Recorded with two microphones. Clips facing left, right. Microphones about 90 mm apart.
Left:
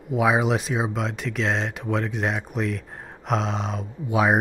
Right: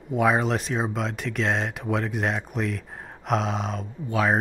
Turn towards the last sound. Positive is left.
turn(degrees=15)  # may be behind; listen again after turning